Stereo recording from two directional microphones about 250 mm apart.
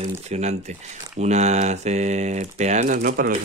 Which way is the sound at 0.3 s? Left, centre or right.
Right.